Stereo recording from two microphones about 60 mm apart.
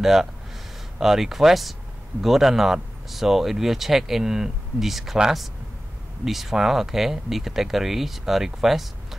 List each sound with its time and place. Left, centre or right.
0.0 s speech: centre